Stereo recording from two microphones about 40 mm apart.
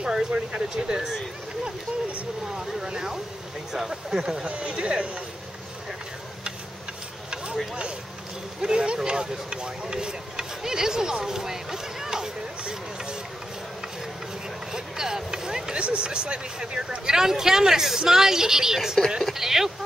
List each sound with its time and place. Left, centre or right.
0.0 s speech: right
2.5 s speech: centre
4.5 s speech: right
8.5 s speech: right
14.7 s a sound: centre
15.8 s speech: right; by 19.7 s centre